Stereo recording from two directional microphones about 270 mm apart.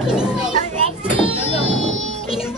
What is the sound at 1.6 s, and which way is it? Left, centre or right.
Music, right.